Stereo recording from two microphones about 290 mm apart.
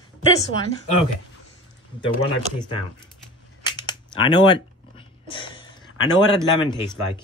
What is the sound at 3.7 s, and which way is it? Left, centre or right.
Camera, centre.